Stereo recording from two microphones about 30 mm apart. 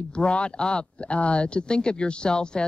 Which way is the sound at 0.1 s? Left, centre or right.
Left.